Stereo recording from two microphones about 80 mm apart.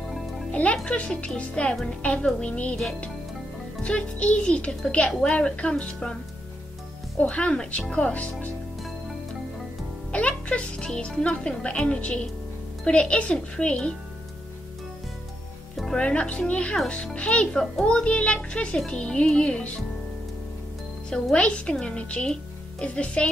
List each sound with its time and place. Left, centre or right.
0.5 s music: centre
0.8 s a child's voice: centre
2.7 s speech: centre
3.8 s a child's voice: centre
7.2 s a child's voice: centre
10.1 s a child's voice: centre
15.7 s a child's voice: centre
21.1 s a child's voice: centre